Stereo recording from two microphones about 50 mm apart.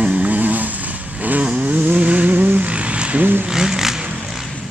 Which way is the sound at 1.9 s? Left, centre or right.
Right.